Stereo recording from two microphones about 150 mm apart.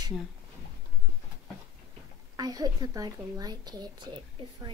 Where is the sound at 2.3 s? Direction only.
25° right (ahead or behind).